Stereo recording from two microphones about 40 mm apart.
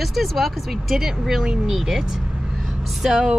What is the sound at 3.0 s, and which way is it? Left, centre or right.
Speech, centre.